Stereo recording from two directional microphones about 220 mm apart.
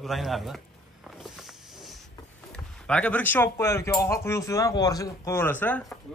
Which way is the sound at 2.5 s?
5° left (ahead or behind).